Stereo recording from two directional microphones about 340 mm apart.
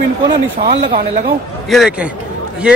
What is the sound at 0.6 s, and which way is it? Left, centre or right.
Speech, right.